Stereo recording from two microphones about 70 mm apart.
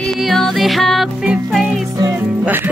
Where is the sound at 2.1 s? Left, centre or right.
Right.